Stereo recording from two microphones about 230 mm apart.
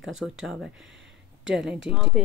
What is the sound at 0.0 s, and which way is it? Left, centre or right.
Speech, centre.